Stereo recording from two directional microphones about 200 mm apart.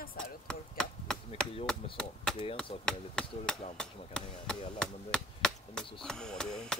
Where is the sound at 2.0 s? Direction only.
5° left (ahead or behind).